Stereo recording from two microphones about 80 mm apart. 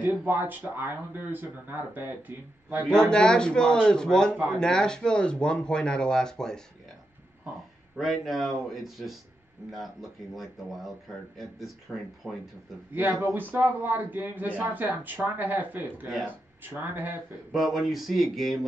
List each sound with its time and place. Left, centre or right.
0.2 s speech: right
2.9 s speech: centre
8.0 s speech: centre
10.3 s speech: centre
12.9 s speech: right
17.5 s speech: centre